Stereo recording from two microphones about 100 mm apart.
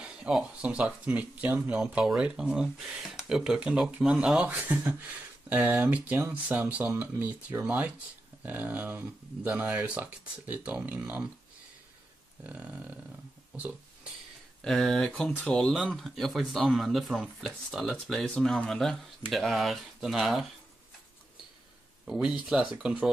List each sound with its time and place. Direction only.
0.0 s speech: 5° right (ahead or behind)
1.8 s speech: 5° right (ahead or behind)
12.4 s speech: 10° right (ahead or behind)
14.6 s speech: centre (ahead or behind)
22.0 s speech: 5° right (ahead or behind)